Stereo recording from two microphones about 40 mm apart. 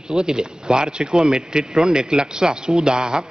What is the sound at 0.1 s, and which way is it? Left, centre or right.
A man's voice, centre.